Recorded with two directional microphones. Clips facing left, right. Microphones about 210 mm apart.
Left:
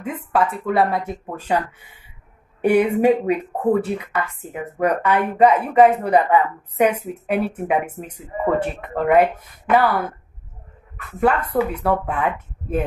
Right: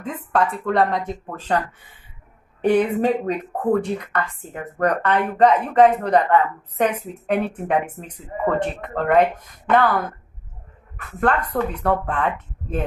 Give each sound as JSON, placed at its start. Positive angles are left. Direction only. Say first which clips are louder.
{"t": 0.0, "sound": "speech", "louder": "left 1 dB", "side_deg": 5}
{"t": 11.1, "sound": "speech", "louder": "left 2 dB", "side_deg": 10}